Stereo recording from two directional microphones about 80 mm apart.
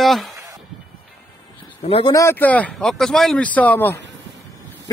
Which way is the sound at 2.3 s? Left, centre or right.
Left.